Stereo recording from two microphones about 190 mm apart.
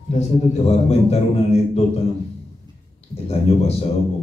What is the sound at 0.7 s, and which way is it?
A man's voice, 35° left (ahead or behind).